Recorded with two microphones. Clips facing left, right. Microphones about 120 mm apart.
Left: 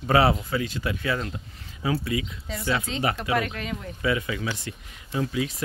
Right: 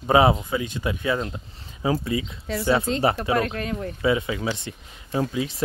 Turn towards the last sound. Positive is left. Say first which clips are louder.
# right 2 dB
turn(degrees=-30)  # may be behind; listen again after turning